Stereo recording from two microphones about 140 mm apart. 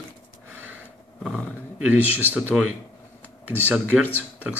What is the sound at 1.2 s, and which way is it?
Speech, centre (ahead or behind).